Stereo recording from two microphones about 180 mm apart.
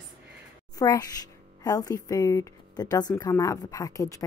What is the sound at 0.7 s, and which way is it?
Speech, 20° left (ahead or behind).